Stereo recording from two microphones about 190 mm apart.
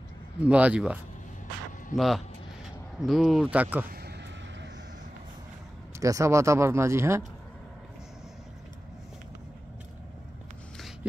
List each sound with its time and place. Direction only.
0.4 s speech: 5° right (ahead or behind)
2.0 s speech: centre (ahead or behind)
3.9 s a sound: 60° right (ahead or behind)
5.9 s speech: 15° right (ahead or behind)